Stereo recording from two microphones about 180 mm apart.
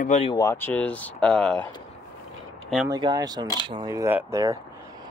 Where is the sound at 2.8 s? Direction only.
20° right (ahead or behind).